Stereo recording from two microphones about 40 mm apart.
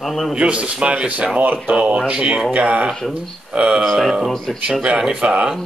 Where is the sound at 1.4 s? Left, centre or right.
Right.